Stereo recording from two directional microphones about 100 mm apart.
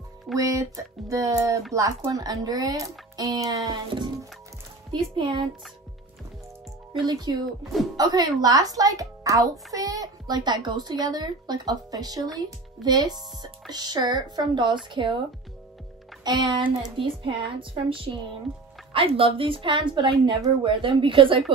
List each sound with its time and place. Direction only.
0.4 s a child's voice: 35° right (ahead or behind); by 5.5 s 60° right (ahead or behind)
7.1 s a child's voice: 45° right (ahead or behind)
16.3 s speech: 45° right (ahead or behind)
16.9 s a woman's voice: 60° right (ahead or behind)